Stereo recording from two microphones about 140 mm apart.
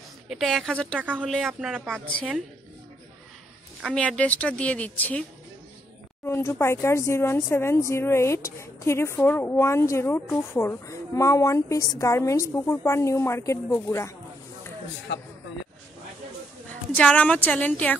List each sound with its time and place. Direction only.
0.3 s a woman's voice: centre (ahead or behind)
0.9 s speech: 10° right (ahead or behind)
1.2 s a woman's voice: 5° left (ahead or behind)
3.8 s a woman's voice: 5° left (ahead or behind)
6.2 s speech: 20° left (ahead or behind)
16.9 s a woman's voice: 10° left (ahead or behind)